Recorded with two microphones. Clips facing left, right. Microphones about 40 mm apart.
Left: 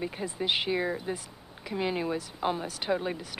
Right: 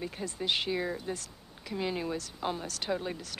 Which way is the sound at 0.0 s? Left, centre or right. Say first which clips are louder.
Left 3 dB; centre.